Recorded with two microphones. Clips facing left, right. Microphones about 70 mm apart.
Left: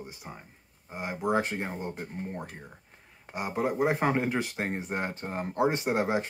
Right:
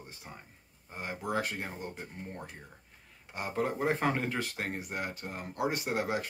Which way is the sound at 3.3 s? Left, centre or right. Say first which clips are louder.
Left 3 dB; centre.